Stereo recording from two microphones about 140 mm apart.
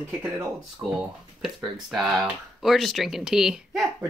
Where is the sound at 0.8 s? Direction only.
40° right (ahead or behind).